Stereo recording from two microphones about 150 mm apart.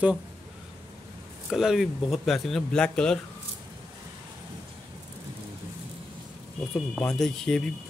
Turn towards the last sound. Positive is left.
turn(degrees=5)  # may be behind; listen again after turning